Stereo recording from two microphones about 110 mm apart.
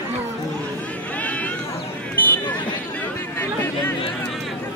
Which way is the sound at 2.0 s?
15° left (ahead or behind).